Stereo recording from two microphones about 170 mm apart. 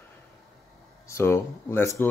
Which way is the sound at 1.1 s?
15° left (ahead or behind).